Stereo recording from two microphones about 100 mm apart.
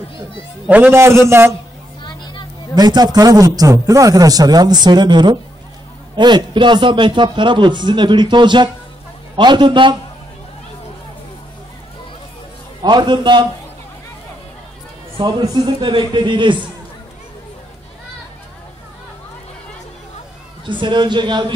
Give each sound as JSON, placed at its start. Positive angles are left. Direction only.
{"t": 0.7, "sound": "a man's voice", "side_deg": -20}
{"t": 2.7, "sound": "a man's voice", "side_deg": -40}
{"t": 12.8, "sound": "a man's voice", "side_deg": -45}
{"t": 15.1, "sound": "a man's voice", "side_deg": -50}
{"t": 20.6, "sound": "a man's voice", "side_deg": -55}